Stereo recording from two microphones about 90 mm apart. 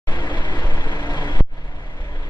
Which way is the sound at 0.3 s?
60° left (ahead or behind).